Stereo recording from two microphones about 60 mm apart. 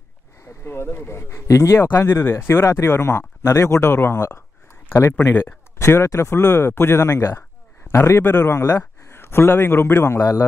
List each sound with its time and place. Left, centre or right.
0.4 s speech: left
1.8 s a man's voice: left
8.2 s a man's voice: left